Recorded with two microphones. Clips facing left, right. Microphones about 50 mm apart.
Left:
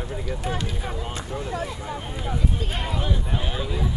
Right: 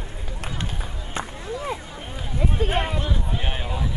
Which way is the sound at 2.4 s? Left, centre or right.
Right.